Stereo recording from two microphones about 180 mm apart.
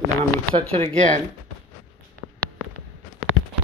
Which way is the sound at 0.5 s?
35° right (ahead or behind).